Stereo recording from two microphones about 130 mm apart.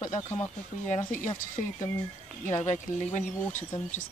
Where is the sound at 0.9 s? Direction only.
90° left.